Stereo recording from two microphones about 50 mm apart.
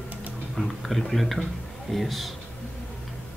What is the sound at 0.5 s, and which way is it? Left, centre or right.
A man's voice, centre.